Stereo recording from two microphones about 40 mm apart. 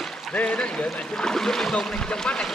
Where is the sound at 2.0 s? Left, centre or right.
Left.